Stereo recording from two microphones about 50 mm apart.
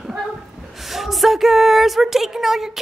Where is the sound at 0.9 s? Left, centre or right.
Centre.